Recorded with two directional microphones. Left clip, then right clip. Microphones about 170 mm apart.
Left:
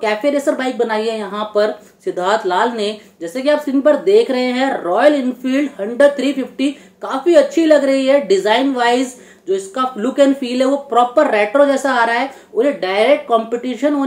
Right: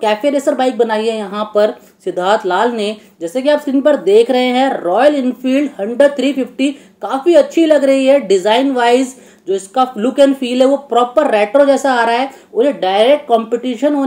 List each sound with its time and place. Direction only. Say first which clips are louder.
0.0 s speech: right 2 dB; 35° right (ahead or behind)